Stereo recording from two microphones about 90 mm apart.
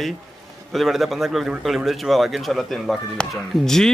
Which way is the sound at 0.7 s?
Centre (ahead or behind).